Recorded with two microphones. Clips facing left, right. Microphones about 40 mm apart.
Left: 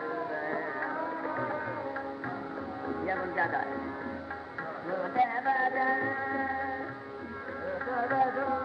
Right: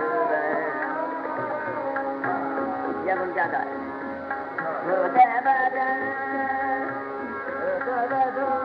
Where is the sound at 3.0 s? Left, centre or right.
Right.